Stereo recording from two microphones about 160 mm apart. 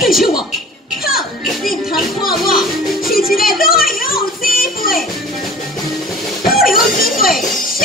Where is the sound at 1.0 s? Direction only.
65° left (ahead or behind).